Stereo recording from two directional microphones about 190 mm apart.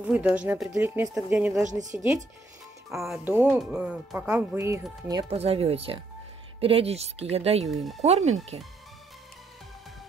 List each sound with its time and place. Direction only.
0.0 s speech: 5° right (ahead or behind)
1.6 s a woman's voice: 40° right (ahead or behind)
2.9 s speech: centre (ahead or behind)
3.7 s speech: 5° right (ahead or behind)
5.3 s a woman's voice: 30° right (ahead or behind)
7.7 s speech: centre (ahead or behind)
8.0 s a woman's voice: 35° right (ahead or behind)